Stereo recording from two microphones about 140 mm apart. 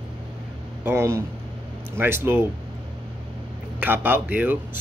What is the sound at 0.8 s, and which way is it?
Speech, 20° right (ahead or behind).